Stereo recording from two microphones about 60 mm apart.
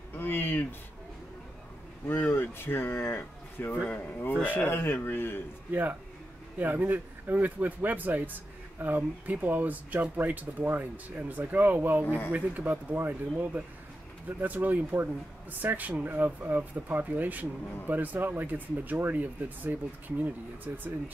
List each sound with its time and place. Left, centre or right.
0.2 s speech: left
2.0 s speech: left
5.7 s speech: right